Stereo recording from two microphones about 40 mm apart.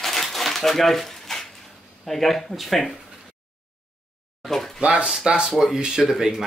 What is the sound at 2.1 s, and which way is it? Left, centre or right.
Speech, centre.